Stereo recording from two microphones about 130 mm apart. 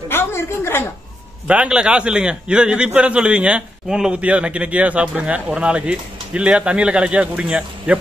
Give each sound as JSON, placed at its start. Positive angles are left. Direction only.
{"t": 0.1, "sound": "a woman's voice", "side_deg": 20}
{"t": 1.5, "sound": "a man's voice", "side_deg": -10}